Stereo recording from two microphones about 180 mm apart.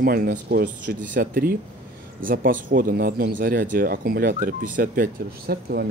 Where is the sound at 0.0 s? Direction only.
55° right (ahead or behind).